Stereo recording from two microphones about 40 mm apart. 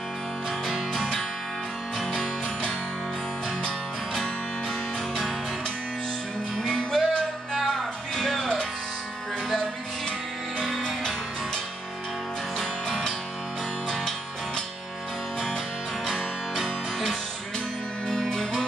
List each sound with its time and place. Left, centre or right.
3.6 s music: centre
6.7 s music: centre
10.8 s music: centre
16.1 s music: centre